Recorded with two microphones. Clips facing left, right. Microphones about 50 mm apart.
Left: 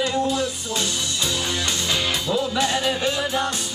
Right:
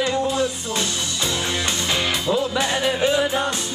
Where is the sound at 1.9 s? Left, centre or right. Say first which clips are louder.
Right 2 dB; right.